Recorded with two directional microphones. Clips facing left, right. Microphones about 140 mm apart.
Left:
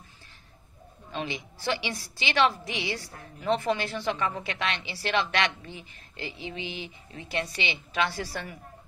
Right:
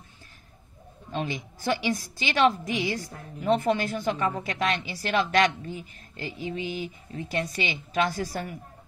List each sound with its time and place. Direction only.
1.1 s a woman's voice: 45° right (ahead or behind)